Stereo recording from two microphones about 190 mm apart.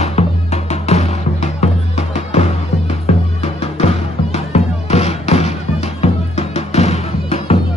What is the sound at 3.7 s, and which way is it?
Music, 35° left (ahead or behind).